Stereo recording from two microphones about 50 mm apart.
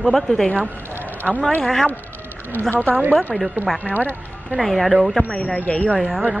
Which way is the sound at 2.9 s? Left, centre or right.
Right.